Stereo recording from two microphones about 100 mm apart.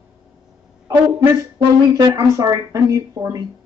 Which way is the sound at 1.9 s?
55° right (ahead or behind).